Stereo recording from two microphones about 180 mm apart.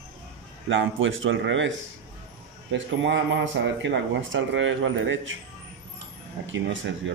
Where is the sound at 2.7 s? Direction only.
85° right.